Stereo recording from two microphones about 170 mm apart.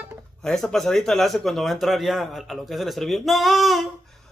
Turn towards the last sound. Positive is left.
turn(degrees=0)  # may be behind; listen again after turning